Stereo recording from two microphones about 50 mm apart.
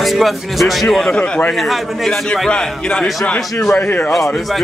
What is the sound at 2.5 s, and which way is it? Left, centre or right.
Speech, centre.